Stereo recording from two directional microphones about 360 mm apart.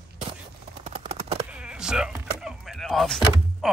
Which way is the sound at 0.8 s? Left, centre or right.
Centre.